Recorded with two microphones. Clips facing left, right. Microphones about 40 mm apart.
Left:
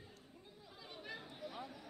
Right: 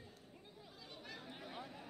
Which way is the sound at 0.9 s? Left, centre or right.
Centre.